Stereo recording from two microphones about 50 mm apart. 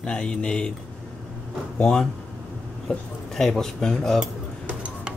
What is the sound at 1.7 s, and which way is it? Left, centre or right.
Speech, centre.